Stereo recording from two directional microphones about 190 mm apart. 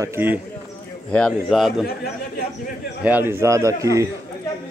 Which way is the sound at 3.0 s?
10° right (ahead or behind).